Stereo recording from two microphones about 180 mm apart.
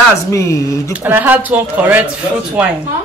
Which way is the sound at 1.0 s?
10° right (ahead or behind).